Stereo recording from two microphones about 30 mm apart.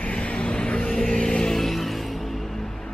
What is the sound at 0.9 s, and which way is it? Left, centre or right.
Vehicle, centre.